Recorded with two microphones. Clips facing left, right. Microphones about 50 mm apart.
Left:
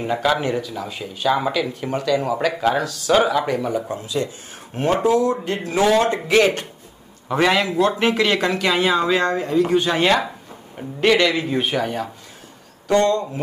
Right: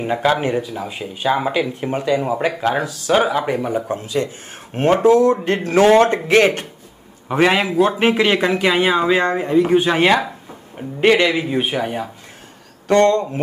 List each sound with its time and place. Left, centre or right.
0.0 s speech: centre
3.8 s speech: right
7.2 s a man's voice: right
12.8 s speech: right